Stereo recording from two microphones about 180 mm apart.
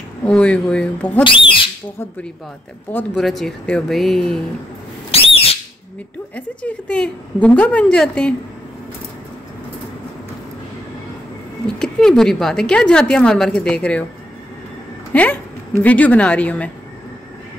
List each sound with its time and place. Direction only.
0.2 s a woman's voice: 5° left (ahead or behind)
1.2 s speech: 30° left (ahead or behind)
2.9 s speech: 5° left (ahead or behind)
5.1 s whistle: 30° left (ahead or behind)
6.3 s a woman's voice: 5° left (ahead or behind)
11.6 s speech: 5° left (ahead or behind)
15.1 s a woman's voice: 10° left (ahead or behind)